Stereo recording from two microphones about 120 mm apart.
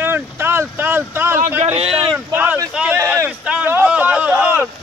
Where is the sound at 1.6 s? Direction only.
60° right (ahead or behind).